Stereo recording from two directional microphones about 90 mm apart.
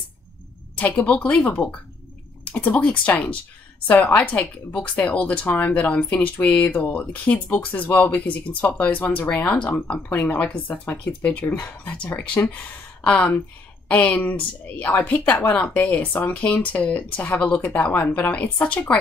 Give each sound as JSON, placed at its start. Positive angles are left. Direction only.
{"t": 0.7, "sound": "speech", "side_deg": 15}